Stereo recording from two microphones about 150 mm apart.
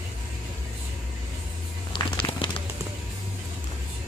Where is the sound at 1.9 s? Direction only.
30° left (ahead or behind).